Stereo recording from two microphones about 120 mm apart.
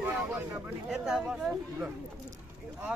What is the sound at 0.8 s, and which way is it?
Speech, 5° right (ahead or behind).